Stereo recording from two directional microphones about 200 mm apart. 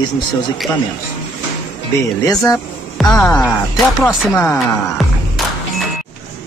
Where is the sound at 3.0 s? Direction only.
Centre (ahead or behind).